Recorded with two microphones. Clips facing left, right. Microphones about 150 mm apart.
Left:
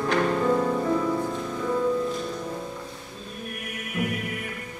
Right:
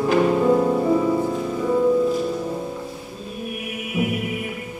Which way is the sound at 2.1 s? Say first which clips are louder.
Right 7 dB; 5° right (ahead or behind).